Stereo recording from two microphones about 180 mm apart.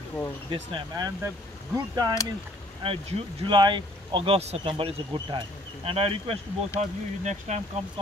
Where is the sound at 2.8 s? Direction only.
30° right (ahead or behind).